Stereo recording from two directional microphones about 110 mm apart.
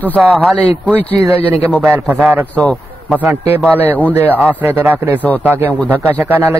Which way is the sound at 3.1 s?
Centre (ahead or behind).